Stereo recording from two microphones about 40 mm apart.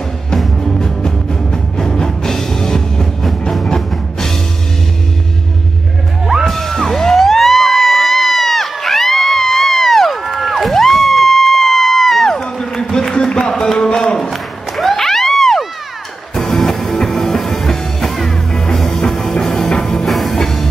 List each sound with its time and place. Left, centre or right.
0.4 s music: centre
6.4 s music: centre
12.4 s a sound: centre
14.3 s music: centre
20.1 s music: centre